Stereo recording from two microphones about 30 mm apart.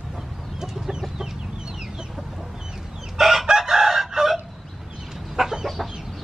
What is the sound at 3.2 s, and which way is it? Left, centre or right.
Chicken, centre.